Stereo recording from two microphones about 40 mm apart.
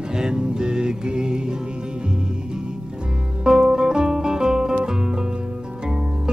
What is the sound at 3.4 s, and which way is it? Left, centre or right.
Music, centre.